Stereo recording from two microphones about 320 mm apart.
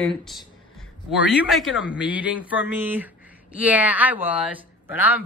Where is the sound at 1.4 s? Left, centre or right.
Centre.